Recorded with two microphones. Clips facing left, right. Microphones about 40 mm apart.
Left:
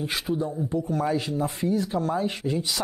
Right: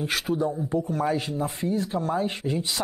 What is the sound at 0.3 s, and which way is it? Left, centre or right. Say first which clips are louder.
Speech: right 1 dB; centre.